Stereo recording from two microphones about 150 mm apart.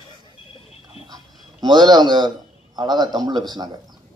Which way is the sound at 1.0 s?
25° right (ahead or behind).